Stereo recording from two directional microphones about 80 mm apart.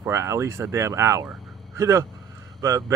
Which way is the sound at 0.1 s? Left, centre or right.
Right.